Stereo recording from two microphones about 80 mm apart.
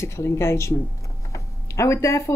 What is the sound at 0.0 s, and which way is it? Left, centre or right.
Speech, left.